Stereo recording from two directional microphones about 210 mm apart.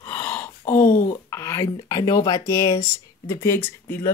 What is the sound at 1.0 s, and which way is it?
Speech, 15° left (ahead or behind).